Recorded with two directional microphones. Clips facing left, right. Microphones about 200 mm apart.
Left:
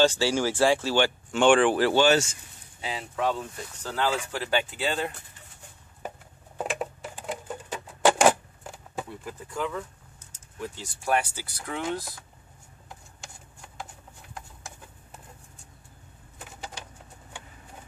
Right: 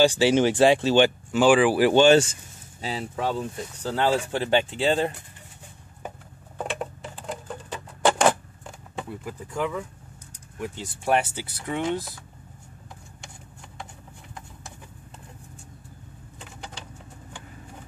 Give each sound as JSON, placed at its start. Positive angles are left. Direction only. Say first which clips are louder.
{"t": 0.0, "sound": "speech", "louder": "right 4 dB", "side_deg": -15}
{"t": 1.3, "sound": "speech", "louder": "even", "side_deg": -5}
{"t": 1.9, "sound": "speech", "louder": "right 5 dB", "side_deg": -25}
{"t": 2.8, "sound": "speech", "louder": "right 1 dB", "side_deg": -35}
{"t": 6.6, "sound": "a sound", "louder": "even", "side_deg": 5}
{"t": 9.1, "sound": "speech", "louder": "right 3 dB", "side_deg": -10}
{"t": 10.3, "sound": "speech", "louder": "right 3 dB", "side_deg": -20}